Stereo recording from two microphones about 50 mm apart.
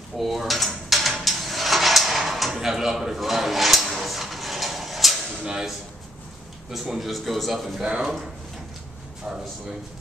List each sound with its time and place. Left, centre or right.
0.2 s drawer open or close: centre
5.4 s a sound: centre
6.7 s a man's voice: centre
7.8 s speech: centre